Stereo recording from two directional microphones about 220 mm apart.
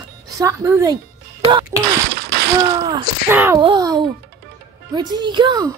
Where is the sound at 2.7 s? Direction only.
15° right (ahead or behind).